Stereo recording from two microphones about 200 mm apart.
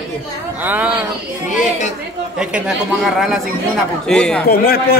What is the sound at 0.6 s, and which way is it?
Speech, 10° right (ahead or behind).